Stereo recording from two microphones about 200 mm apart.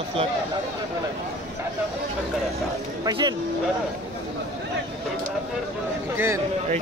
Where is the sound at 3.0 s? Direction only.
20° right (ahead or behind).